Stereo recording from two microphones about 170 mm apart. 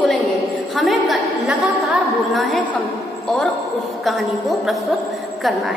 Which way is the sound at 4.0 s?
Centre (ahead or behind).